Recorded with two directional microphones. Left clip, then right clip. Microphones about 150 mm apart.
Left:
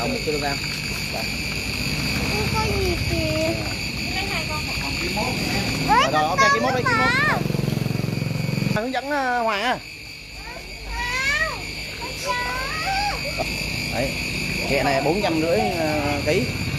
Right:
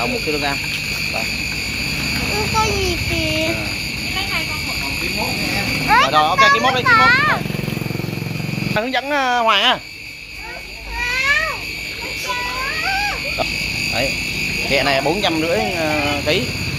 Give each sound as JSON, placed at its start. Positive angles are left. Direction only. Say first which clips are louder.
{"t": 5.9, "sound": "a sound", "louder": "right 4 dB", "side_deg": 30}
{"t": 6.1, "sound": "speech", "louder": "right 5 dB", "side_deg": 0}
{"t": 8.7, "sound": "speech", "louder": "right 6 dB", "side_deg": -5}
{"t": 14.7, "sound": "speech", "louder": "right 3 dB", "side_deg": 5}